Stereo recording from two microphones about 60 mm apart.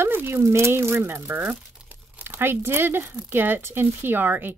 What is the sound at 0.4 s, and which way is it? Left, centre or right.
Speech, right.